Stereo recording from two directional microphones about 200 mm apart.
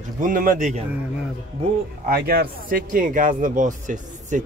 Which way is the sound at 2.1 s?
50° right (ahead or behind).